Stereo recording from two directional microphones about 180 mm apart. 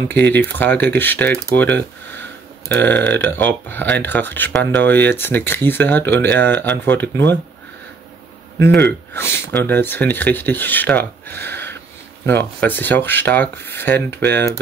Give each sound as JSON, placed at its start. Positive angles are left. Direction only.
{"t": 0.3, "sound": "speech", "side_deg": 10}
{"t": 8.5, "sound": "a man's voice", "side_deg": -65}
{"t": 9.1, "sound": "speech", "side_deg": 15}